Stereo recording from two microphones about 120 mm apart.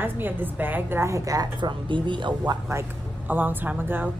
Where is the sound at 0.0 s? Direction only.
15° right (ahead or behind); by 2.6 s 40° right (ahead or behind).